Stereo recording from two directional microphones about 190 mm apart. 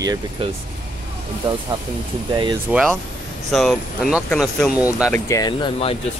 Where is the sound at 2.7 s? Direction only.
5° right (ahead or behind).